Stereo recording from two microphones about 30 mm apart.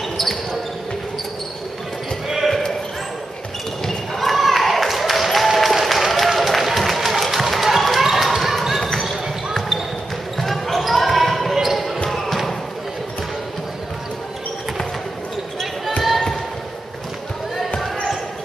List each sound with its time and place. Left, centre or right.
3.8 s basketball bounce: centre
4.4 s a sound: centre
5.6 s applause: centre
7.5 s basketball bounce: centre